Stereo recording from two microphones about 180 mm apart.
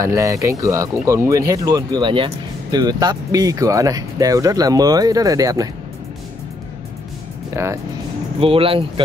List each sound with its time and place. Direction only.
0.0 s speech: 15° right (ahead or behind)
7.5 s speech: 15° right (ahead or behind)
8.4 s speech: 30° right (ahead or behind)